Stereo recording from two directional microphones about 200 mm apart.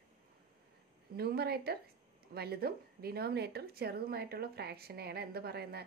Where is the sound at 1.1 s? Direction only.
50° right (ahead or behind).